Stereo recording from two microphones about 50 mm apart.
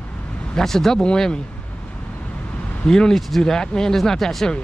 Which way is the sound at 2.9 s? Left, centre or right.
Centre.